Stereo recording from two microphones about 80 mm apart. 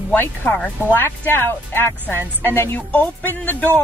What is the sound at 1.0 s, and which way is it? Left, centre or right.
A woman's voice, left.